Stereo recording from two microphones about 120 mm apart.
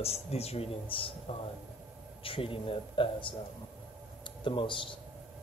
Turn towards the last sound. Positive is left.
turn(degrees=45)  # may be behind; listen again after turning